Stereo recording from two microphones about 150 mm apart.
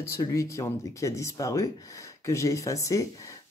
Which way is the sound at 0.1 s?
20° left (ahead or behind).